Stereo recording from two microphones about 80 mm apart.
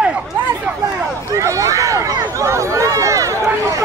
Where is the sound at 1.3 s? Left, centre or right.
Right.